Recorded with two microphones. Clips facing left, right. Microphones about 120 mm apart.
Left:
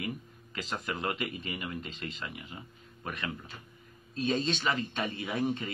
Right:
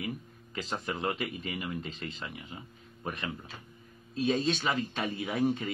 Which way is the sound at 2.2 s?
10° right (ahead or behind).